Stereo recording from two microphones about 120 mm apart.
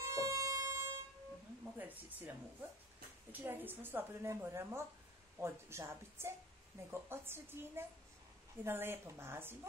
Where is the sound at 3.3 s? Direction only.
15° right (ahead or behind).